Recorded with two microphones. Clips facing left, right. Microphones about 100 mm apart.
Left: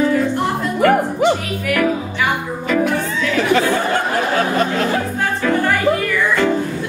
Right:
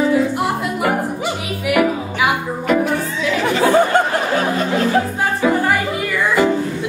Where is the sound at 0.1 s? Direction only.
10° right (ahead or behind).